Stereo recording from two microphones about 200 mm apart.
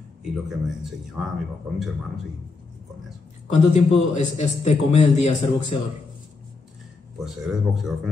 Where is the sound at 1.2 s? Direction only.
5° right (ahead or behind).